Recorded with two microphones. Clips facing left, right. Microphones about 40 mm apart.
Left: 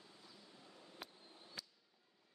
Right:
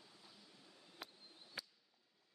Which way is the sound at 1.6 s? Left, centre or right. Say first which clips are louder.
Right 3 dB; centre.